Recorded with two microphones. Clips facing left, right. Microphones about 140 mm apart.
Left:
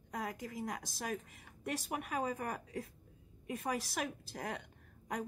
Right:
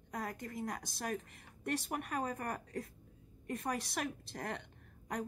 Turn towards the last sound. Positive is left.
turn(degrees=0)  # may be behind; listen again after turning